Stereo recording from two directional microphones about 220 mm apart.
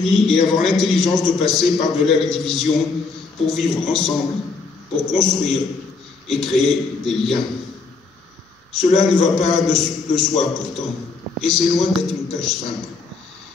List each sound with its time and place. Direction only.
0.0 s a man's voice: centre (ahead or behind)
8.7 s a man's voice: centre (ahead or behind)